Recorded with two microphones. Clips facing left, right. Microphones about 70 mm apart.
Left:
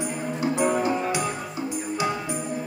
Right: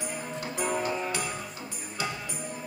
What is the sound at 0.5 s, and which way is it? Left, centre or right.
Music, centre.